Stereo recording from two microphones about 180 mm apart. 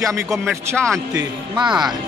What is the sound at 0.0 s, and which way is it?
Speech, 15° right (ahead or behind).